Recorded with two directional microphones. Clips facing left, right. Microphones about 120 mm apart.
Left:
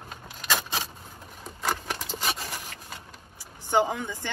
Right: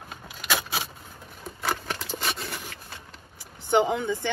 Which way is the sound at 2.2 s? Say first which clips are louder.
Left 1 dB; 5° left (ahead or behind).